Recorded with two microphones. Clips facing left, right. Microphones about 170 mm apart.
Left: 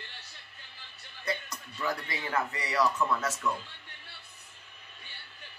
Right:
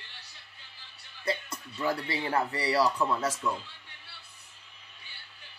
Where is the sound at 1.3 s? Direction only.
30° right (ahead or behind).